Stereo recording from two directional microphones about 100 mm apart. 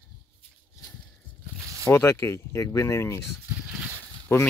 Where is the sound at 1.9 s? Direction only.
30° left (ahead or behind).